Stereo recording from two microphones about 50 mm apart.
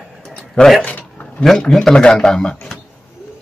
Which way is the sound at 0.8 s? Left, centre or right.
Left.